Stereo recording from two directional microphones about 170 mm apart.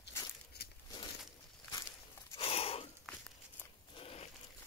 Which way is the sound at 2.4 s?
35° left (ahead or behind).